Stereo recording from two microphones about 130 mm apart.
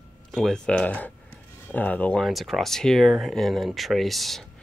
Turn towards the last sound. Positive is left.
turn(degrees=0)  # may be behind; listen again after turning